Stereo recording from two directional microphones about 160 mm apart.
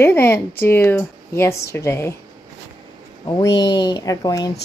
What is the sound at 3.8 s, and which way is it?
Speech, 25° left (ahead or behind).